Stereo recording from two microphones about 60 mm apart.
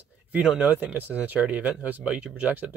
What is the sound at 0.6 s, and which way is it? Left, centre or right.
Speech, right.